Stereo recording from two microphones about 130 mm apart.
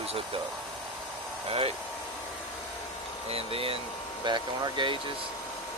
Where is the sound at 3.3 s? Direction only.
50° right (ahead or behind).